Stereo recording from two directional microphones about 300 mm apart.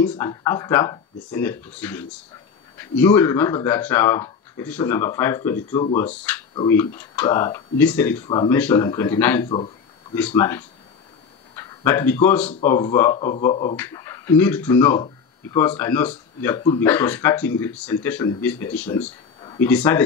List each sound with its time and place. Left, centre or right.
0.0 s speech: centre
19.4 s a sound: centre
19.7 s speech: centre